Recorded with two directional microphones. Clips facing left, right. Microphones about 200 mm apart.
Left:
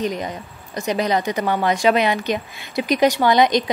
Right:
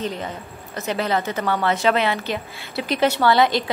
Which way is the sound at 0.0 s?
15° left (ahead or behind).